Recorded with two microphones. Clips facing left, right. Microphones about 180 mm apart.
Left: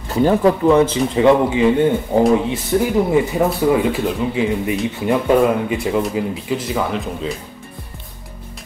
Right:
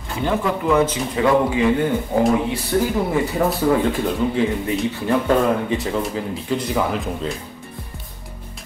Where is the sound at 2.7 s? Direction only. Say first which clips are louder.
Left 2 dB; 20° left (ahead or behind).